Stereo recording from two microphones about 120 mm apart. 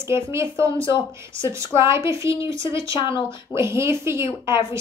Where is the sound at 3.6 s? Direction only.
20° right (ahead or behind).